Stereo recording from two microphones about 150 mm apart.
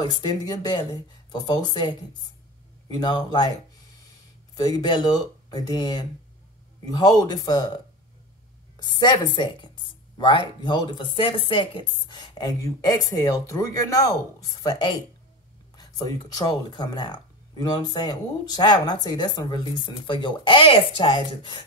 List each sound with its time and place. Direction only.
0.0 s a woman's voice: 30° left (ahead or behind)
4.6 s a woman's voice: 25° left (ahead or behind)
8.7 s a woman's voice: 30° left (ahead or behind)